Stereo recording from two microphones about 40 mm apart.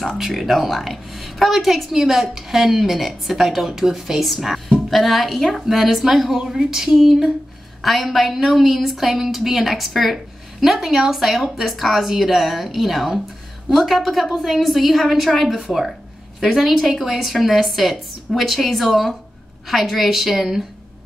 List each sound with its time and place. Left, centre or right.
0.2 s a woman's voice: centre